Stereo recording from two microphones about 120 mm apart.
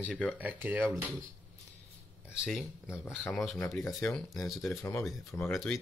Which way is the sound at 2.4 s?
Centre (ahead or behind).